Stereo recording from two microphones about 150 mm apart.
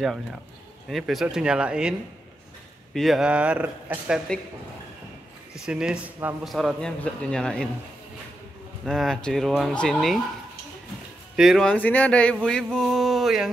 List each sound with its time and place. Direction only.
0.0 s speech: centre (ahead or behind)
5.5 s speech: 5° right (ahead or behind)
8.8 s speech: centre (ahead or behind)
11.3 s speech: centre (ahead or behind)